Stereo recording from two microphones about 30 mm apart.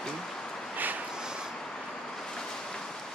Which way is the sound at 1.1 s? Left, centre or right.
Right.